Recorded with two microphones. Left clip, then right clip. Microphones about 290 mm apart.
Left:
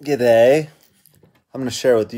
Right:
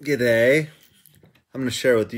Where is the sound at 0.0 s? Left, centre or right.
Centre.